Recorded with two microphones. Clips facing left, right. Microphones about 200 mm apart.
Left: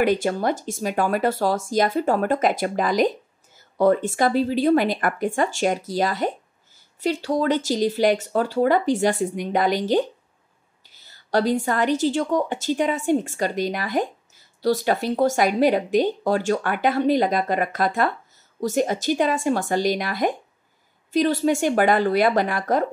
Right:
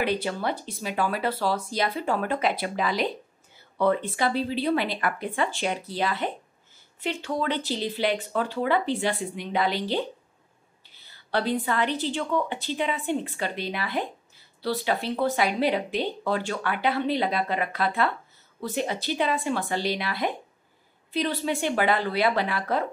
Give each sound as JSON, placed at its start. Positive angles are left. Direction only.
{"t": 0.0, "sound": "speech", "side_deg": 45}